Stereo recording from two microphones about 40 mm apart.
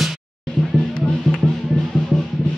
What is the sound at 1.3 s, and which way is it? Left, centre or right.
Music, centre.